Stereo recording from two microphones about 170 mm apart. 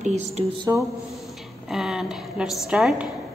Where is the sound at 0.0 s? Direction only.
40° right (ahead or behind).